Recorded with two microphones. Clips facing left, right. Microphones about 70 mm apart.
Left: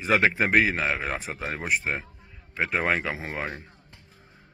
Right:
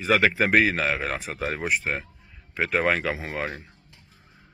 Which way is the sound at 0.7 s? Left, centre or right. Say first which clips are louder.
Right 1 dB; centre.